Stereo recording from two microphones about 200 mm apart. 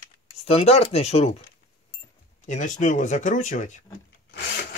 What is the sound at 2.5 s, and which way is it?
Speech, 35° left (ahead or behind).